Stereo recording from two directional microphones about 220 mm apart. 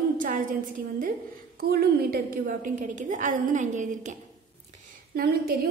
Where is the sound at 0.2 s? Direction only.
40° right (ahead or behind).